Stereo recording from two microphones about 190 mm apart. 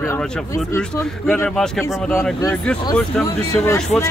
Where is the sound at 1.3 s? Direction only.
5° left (ahead or behind).